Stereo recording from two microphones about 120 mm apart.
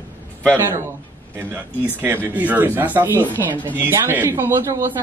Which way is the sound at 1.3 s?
20° right (ahead or behind).